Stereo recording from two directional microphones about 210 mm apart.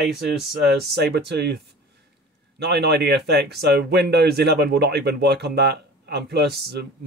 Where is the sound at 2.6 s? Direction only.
50° right (ahead or behind).